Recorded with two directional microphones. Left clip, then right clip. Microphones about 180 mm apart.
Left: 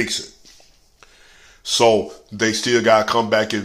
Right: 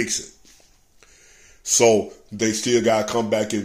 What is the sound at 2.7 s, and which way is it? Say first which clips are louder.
Speech: left 5 dB; 15° right (ahead or behind).